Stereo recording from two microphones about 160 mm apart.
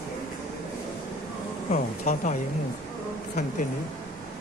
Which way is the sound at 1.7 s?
50° left (ahead or behind).